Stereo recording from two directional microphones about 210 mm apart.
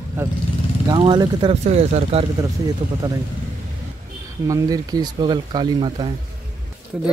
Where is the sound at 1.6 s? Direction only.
30° right (ahead or behind).